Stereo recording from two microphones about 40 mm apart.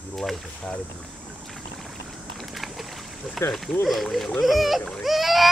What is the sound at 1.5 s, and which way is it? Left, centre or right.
Vehicle, centre.